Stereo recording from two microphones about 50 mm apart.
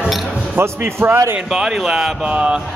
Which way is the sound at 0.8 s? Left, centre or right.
Right.